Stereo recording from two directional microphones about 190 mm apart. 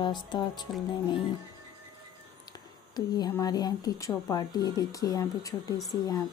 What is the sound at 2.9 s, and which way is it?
Speech, 20° left (ahead or behind).